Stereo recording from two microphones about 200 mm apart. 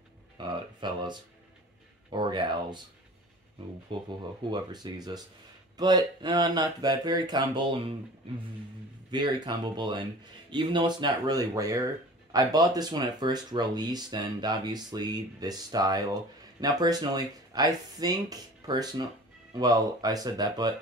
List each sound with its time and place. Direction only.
0.4 s speech: 20° right (ahead or behind)
4.5 s speech: 20° right (ahead or behind)
9.1 s speech: 20° right (ahead or behind)